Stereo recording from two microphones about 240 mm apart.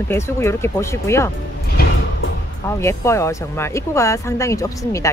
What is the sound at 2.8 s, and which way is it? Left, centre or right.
Speech, centre.